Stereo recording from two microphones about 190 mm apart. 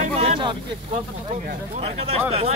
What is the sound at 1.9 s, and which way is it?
Speech, 30° right (ahead or behind).